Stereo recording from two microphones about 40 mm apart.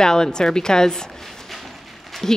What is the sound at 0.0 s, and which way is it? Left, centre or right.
A woman's voice, centre.